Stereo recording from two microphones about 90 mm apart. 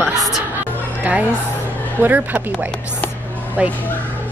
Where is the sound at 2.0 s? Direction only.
20° right (ahead or behind).